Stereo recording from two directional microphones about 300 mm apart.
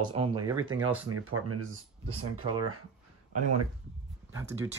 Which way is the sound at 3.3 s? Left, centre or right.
Right.